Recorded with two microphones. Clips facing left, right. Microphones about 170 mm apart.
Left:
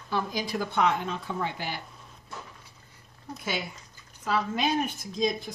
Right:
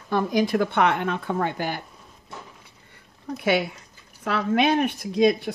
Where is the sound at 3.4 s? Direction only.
65° right (ahead or behind).